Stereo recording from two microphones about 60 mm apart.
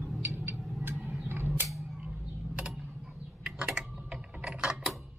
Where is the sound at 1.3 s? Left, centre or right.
Right.